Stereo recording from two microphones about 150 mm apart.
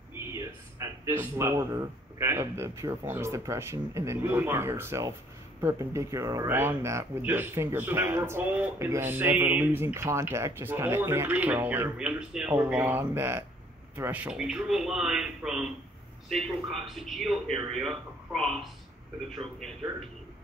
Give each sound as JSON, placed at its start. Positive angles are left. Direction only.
{"t": 0.3, "sound": "a man's voice", "side_deg": -20}